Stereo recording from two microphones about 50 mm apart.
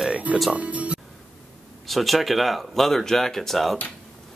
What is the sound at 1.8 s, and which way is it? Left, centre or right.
Speech, centre.